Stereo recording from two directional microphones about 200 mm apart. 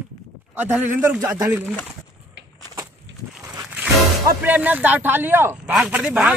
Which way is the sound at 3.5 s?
10° right (ahead or behind).